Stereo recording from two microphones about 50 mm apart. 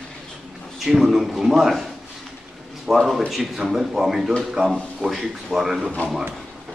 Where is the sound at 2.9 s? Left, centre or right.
Centre.